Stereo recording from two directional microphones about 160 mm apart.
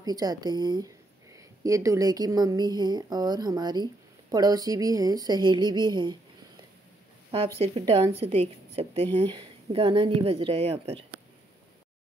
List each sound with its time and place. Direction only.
0.0 s speech: 25° right (ahead or behind)
7.5 s a woman's voice: 40° right (ahead or behind)